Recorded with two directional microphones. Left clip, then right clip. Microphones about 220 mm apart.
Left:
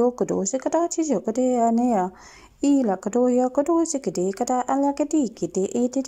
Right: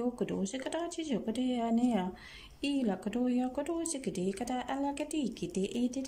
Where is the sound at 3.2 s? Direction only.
10° left (ahead or behind).